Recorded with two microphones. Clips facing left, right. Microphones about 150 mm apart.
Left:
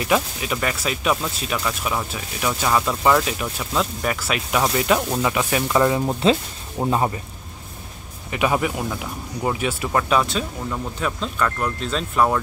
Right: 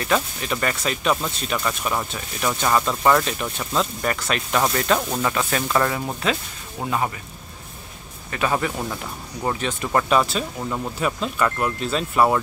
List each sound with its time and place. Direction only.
0.0 s speech: 10° left (ahead or behind); by 7.1 s 30° left (ahead or behind)
8.3 s speech: 15° left (ahead or behind); by 12.4 s 5° right (ahead or behind)